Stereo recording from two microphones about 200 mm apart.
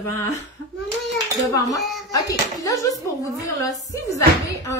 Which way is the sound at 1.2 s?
15° left (ahead or behind).